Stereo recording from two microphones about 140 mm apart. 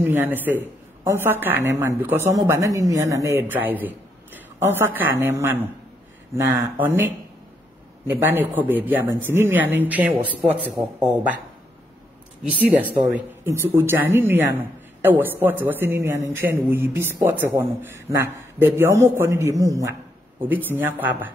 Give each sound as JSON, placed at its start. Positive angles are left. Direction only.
{"t": 0.0, "sound": "a woman's voice", "side_deg": -15}
{"t": 8.1, "sound": "a woman's voice", "side_deg": -15}
{"t": 12.4, "sound": "a woman's voice", "side_deg": -10}